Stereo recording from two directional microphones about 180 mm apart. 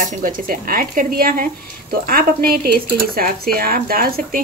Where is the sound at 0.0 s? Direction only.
50° right (ahead or behind).